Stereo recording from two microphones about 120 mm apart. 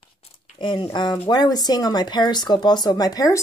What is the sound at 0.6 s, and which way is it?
Speech, 40° left (ahead or behind).